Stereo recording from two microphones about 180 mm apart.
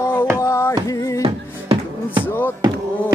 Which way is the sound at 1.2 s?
30° right (ahead or behind).